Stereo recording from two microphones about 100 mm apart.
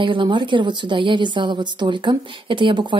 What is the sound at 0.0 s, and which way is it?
A woman's voice, 55° right (ahead or behind).